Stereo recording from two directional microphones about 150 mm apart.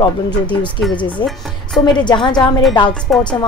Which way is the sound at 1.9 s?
30° left (ahead or behind).